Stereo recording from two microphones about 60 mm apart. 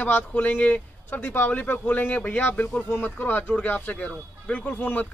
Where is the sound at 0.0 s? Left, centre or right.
Left.